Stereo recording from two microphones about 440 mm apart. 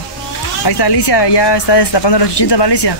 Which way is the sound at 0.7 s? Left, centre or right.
Left.